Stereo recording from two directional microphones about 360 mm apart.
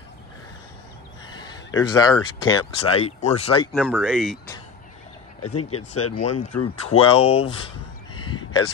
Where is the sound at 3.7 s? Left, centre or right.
Centre.